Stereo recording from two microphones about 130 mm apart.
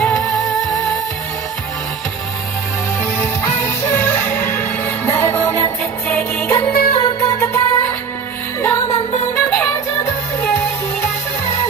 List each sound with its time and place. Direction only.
0.0 s music: 5° left (ahead or behind)
3.0 s music: 15° left (ahead or behind)